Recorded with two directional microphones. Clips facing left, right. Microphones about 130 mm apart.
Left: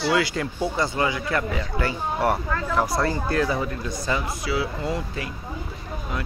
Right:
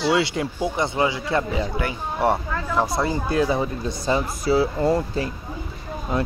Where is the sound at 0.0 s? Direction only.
25° right (ahead or behind).